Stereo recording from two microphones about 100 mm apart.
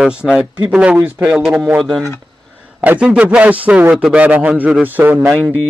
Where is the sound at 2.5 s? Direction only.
15° right (ahead or behind).